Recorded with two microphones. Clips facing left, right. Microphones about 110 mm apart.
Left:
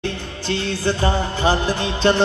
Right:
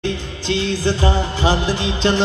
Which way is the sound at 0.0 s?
50° left (ahead or behind).